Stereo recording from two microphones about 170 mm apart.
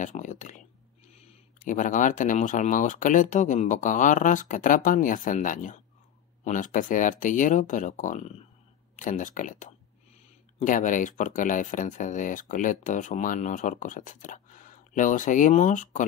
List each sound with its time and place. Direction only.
0.0 s speech: 45° left (ahead or behind)